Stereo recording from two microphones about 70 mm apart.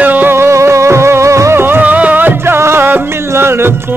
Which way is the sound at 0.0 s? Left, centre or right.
Right.